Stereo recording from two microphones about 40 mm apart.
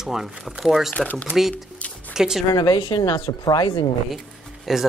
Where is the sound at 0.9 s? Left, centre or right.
Left.